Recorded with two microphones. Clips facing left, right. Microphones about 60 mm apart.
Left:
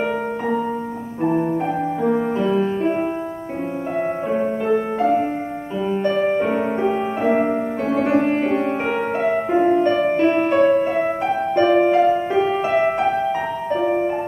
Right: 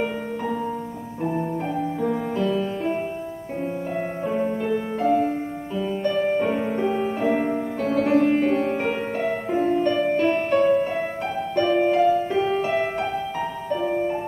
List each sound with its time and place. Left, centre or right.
2.0 s music: left
4.3 s music: left